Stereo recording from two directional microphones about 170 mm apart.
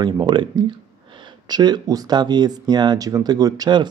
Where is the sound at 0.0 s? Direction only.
25° right (ahead or behind).